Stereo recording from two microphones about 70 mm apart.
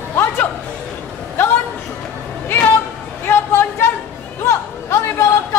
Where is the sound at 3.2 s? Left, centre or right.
Left.